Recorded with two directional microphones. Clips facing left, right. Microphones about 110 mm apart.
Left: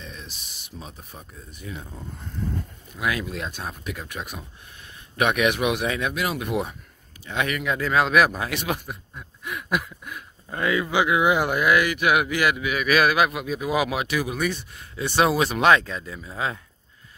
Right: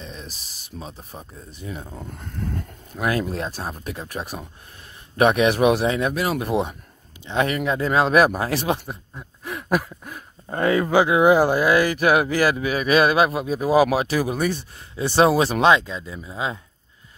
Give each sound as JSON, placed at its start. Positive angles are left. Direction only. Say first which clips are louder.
{"t": 0.0, "sound": "speech", "louder": "right 3 dB", "side_deg": -35}
{"t": 3.0, "sound": "speech", "louder": "right 4 dB", "side_deg": -40}
{"t": 15.7, "sound": "speech", "louder": "right 1 dB", "side_deg": -20}